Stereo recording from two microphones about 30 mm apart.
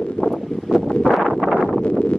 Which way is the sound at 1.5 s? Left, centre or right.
Centre.